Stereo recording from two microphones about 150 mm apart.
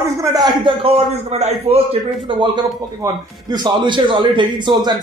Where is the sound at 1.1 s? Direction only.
45° right (ahead or behind).